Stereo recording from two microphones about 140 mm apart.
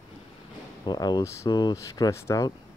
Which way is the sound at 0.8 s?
30° left (ahead or behind).